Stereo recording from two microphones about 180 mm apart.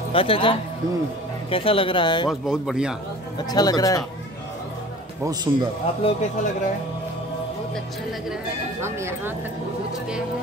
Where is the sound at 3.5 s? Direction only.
20° left (ahead or behind).